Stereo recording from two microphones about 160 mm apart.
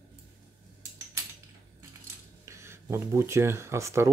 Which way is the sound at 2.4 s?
15° right (ahead or behind).